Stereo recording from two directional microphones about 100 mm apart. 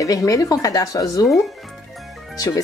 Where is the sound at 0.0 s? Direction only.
35° left (ahead or behind).